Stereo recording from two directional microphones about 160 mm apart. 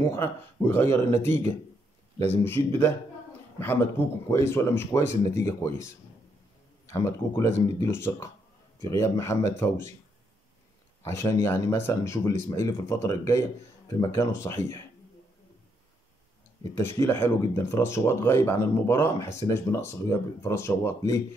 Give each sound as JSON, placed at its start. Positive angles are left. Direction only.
{"t": 0.0, "sound": "speech", "side_deg": 15}
{"t": 6.9, "sound": "speech", "side_deg": 15}
{"t": 11.1, "sound": "speech", "side_deg": 15}
{"t": 16.7, "sound": "speech", "side_deg": 15}